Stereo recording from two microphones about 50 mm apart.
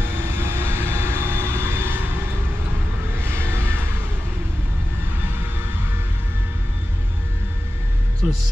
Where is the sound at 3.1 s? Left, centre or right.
Right.